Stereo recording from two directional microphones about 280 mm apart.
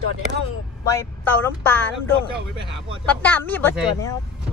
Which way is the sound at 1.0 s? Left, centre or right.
Centre.